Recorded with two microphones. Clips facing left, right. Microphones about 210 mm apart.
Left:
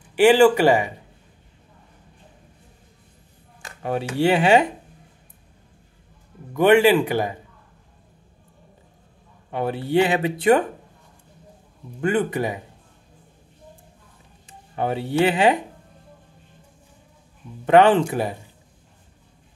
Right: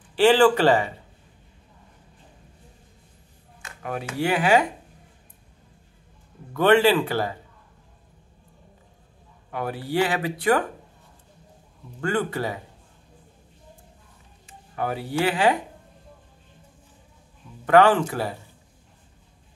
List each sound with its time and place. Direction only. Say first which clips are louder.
0.1 s speech: left 3 dB; 15° left (ahead or behind)
3.6 s speech: left 6 dB; 30° left (ahead or behind)
6.5 s speech: left 3 dB; 15° left (ahead or behind)
9.5 s speech: left 5 dB; 25° left (ahead or behind)
12.0 s speech: left 4 dB; 20° left (ahead or behind)
14.8 s speech: left 5 dB; 25° left (ahead or behind)
17.6 s speech: left 2 dB; 20° left (ahead or behind)